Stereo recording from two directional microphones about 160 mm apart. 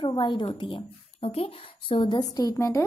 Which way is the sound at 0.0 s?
30° left (ahead or behind).